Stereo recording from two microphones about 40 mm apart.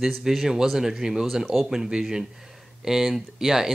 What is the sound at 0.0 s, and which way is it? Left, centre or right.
Speech, centre.